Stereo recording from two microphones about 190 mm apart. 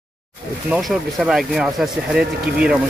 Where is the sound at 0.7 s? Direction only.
5° right (ahead or behind).